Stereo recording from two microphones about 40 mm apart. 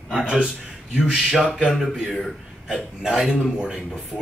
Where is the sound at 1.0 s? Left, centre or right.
Centre.